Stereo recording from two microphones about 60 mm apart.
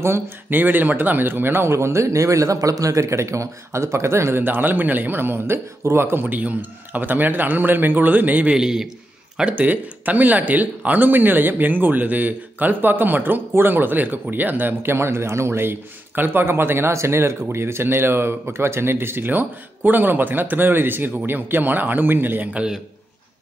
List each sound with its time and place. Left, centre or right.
0.0 s speech: right
0.6 s speech: right
8.5 s a man's voice: centre
9.6 s speech: right
22.5 s a man's voice: centre